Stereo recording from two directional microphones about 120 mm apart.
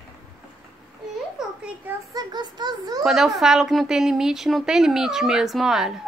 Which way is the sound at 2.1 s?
35° right (ahead or behind).